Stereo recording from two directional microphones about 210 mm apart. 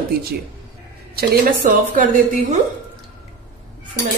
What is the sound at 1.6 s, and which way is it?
Speech, 40° right (ahead or behind).